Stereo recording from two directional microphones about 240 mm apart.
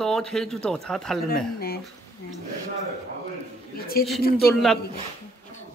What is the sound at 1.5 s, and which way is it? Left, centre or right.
Speech, left.